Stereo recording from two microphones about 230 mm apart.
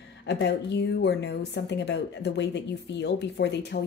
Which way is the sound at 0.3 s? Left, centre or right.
Left.